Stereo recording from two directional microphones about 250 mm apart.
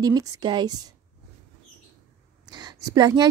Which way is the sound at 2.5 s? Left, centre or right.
Centre.